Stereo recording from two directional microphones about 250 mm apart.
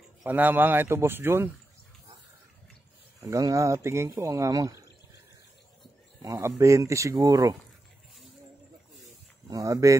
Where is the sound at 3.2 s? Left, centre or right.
Centre.